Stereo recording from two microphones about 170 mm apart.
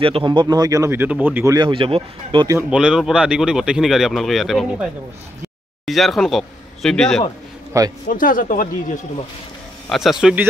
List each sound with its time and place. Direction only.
0.0 s speech: 30° right (ahead or behind)
2.7 s speech: 5° right (ahead or behind)
5.9 s speech: centre (ahead or behind)
7.7 s speech: 20° right (ahead or behind)
8.1 s speech: 55° left (ahead or behind)
9.8 s speech: centre (ahead or behind)